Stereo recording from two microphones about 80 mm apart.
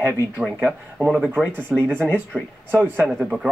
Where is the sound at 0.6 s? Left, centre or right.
Centre.